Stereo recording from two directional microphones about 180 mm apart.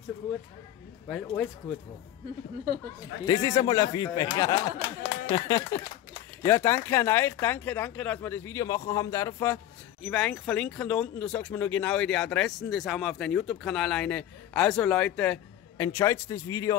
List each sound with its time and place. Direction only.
1.0 s speech: 5° left (ahead or behind)
3.3 s speech: 20° left (ahead or behind)
4.7 s speech: 15° right (ahead or behind)
5.3 s speech: 25° left (ahead or behind)
10.0 s speech: 5° left (ahead or behind)